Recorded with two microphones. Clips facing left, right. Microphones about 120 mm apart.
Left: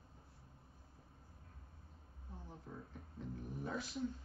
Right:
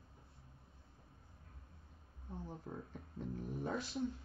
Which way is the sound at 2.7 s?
50° right (ahead or behind).